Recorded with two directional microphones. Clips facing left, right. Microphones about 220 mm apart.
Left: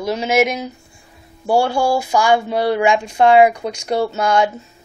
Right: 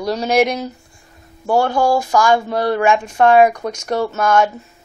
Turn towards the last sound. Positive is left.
turn(degrees=15)  # may be behind; listen again after turning